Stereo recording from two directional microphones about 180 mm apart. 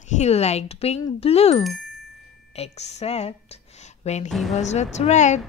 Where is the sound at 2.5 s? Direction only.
35° left (ahead or behind).